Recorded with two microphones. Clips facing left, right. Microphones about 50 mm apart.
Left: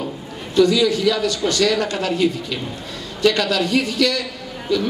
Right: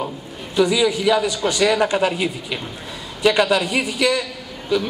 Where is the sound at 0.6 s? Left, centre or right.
Centre.